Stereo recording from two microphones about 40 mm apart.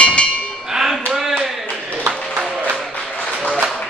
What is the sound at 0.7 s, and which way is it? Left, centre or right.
Music, centre.